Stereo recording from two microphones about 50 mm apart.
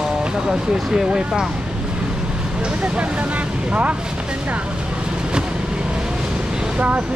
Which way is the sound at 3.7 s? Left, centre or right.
Right.